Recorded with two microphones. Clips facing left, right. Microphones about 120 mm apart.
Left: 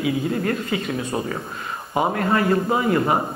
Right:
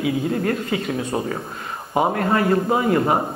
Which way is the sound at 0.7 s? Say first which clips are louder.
Right 1 dB; 50° right (ahead or behind).